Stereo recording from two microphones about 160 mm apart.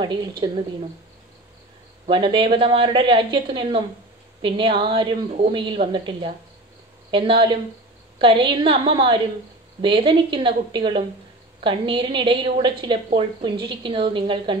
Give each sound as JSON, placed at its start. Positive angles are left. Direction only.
{"t": 0.0, "sound": "a woman's voice", "side_deg": -30}
{"t": 2.0, "sound": "a woman's voice", "side_deg": -30}